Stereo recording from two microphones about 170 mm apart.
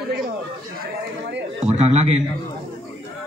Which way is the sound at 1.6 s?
40° right (ahead or behind).